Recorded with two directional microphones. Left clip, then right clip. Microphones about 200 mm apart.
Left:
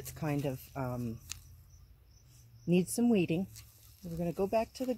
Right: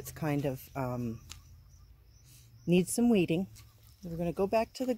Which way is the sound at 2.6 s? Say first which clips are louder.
Right 2 dB; 10° right (ahead or behind).